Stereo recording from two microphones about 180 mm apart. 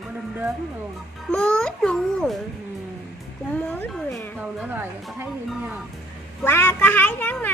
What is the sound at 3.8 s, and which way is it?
Speech, centre (ahead or behind).